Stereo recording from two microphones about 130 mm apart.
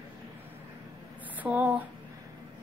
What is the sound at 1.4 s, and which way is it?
Speech, 10° right (ahead or behind).